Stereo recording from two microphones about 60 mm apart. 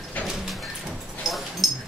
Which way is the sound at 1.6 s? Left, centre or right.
Centre.